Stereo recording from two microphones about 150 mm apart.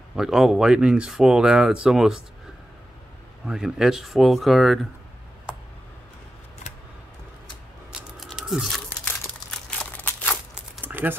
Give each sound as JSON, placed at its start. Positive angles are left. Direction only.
{"t": 0.1, "sound": "speech", "side_deg": 0}
{"t": 3.4, "sound": "speech", "side_deg": -5}
{"t": 7.9, "sound": "a sound", "side_deg": -5}
{"t": 10.5, "sound": "crumpling", "side_deg": -10}